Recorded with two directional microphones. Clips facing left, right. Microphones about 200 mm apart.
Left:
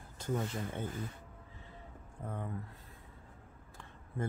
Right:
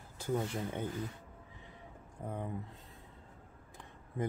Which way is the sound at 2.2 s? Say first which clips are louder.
Right 1 dB; 15° right (ahead or behind).